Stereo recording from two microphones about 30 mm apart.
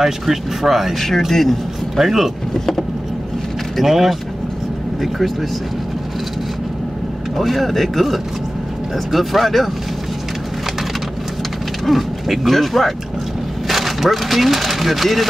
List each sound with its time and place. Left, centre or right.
0.0 s speech: centre
0.9 s speech: centre
2.0 s speech: centre
3.8 s speech: centre
7.3 s speech: centre
11.8 s speech: centre
13.7 s speech: centre